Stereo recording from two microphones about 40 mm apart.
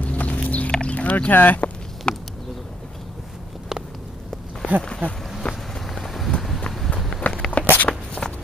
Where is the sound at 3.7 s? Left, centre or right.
Centre.